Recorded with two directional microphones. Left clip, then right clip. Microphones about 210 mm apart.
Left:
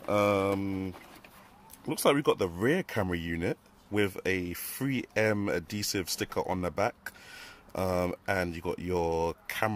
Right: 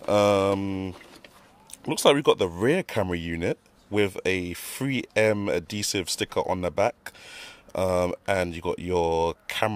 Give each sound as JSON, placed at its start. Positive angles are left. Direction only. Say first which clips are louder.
{"t": 0.0, "sound": "mantra", "louder": "right 6 dB", "side_deg": -35}
{"t": 1.9, "sound": "speech", "louder": "right 6 dB", "side_deg": -30}